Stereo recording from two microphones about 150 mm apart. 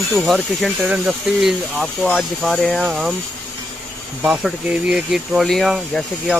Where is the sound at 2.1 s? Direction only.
5° left (ahead or behind).